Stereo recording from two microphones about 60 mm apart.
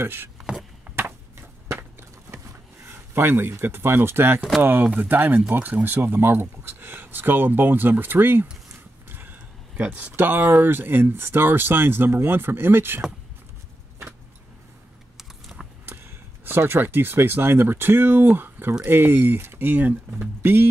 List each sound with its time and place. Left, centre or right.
0.0 s speech: right
0.4 s chopping: centre
0.9 s chop: right
1.7 s a sound: right
2.9 s speech: right
4.4 s speech: centre
5.0 s speech: right
9.8 s speech: right
15.1 s typing: centre
15.8 s speech: right